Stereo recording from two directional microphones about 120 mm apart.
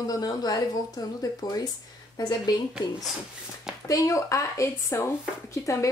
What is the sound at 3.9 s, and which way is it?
Speech, 25° left (ahead or behind).